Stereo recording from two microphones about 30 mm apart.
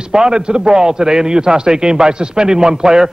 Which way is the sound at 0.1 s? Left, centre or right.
Right.